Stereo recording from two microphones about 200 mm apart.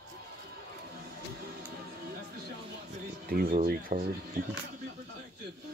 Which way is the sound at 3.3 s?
45° right (ahead or behind).